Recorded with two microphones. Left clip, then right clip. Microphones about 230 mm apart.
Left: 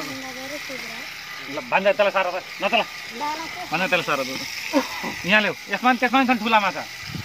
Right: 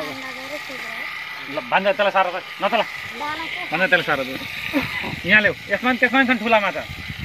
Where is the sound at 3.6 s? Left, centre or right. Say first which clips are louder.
Right 4 dB; centre.